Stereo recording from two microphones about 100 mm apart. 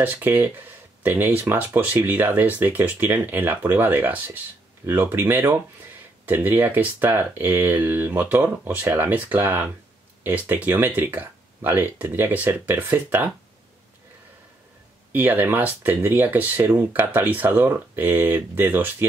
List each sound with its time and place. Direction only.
0.0 s speech: 20° right (ahead or behind)
15.1 s speech: 20° right (ahead or behind)